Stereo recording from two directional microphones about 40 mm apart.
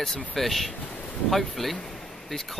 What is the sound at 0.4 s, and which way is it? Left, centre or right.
Speech, centre.